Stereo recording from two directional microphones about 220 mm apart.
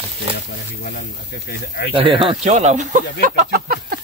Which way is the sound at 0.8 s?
45° left (ahead or behind).